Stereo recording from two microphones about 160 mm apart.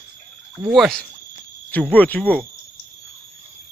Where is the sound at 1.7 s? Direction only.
10° left (ahead or behind).